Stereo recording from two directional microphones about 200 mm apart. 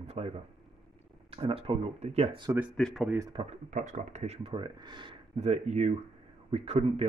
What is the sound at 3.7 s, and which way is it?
Speech, 40° right (ahead or behind).